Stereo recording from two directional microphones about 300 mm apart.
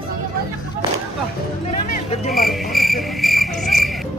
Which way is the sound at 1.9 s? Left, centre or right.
Left.